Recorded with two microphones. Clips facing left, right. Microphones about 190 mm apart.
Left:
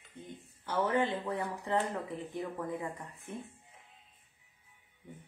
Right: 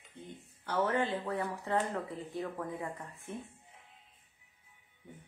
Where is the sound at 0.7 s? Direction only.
15° left (ahead or behind).